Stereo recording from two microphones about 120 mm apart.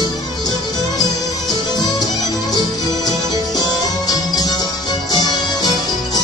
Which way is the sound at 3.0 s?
35° left (ahead or behind).